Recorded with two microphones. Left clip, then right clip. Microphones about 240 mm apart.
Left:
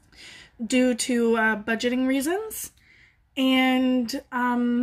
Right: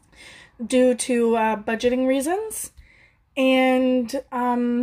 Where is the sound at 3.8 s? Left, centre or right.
Centre.